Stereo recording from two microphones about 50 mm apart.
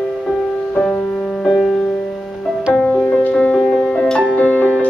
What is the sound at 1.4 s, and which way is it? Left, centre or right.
Music, centre.